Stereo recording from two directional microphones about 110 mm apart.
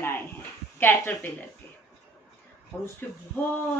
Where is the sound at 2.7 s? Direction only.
15° left (ahead or behind).